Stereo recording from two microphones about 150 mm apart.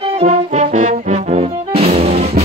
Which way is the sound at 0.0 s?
45° right (ahead or behind).